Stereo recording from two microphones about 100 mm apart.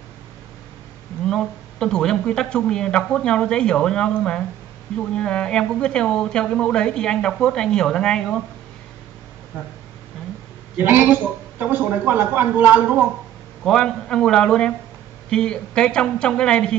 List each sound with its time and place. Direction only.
1.2 s speech: 5° left (ahead or behind)
10.8 s a woman's voice: 20° right (ahead or behind)
13.7 s speech: 5° left (ahead or behind)